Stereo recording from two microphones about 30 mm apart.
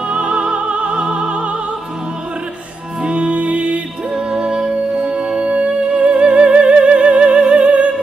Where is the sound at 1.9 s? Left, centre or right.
Right.